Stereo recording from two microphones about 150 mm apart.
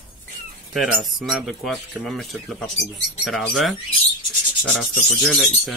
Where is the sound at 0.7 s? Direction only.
Centre (ahead or behind).